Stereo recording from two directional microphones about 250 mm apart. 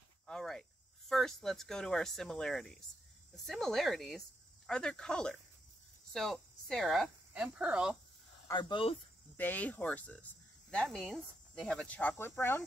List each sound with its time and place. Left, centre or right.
0.3 s speech: centre
8.5 s speech: centre
9.4 s speech: centre